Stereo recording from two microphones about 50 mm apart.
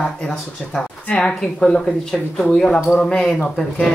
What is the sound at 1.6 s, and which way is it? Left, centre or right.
A woman's voice, centre.